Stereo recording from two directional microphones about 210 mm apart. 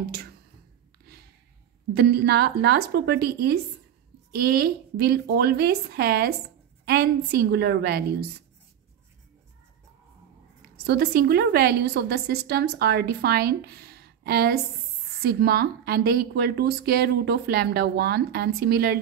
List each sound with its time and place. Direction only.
2.0 s speech: 50° right (ahead or behind)
10.9 s speech: 50° right (ahead or behind)